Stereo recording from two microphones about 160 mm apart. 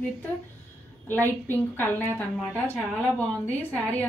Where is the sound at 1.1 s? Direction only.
15° left (ahead or behind).